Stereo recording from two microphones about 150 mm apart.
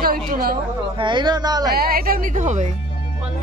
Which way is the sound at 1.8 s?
80° right.